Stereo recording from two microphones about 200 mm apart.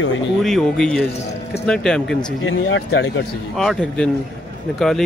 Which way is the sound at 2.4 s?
65° left (ahead or behind).